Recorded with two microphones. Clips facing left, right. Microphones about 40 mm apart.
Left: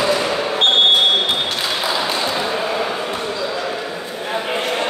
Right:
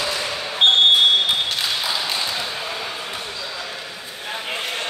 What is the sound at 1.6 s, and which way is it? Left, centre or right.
Basketball bounce, centre.